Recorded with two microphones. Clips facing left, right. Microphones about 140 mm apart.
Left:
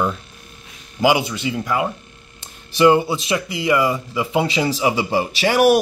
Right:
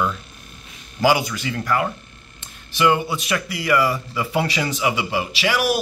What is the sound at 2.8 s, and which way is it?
Speech, 30° left (ahead or behind).